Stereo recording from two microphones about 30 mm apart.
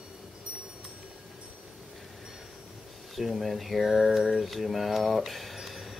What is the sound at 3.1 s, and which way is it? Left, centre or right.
Speech, centre.